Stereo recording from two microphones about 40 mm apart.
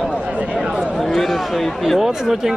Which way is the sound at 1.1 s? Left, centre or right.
Centre.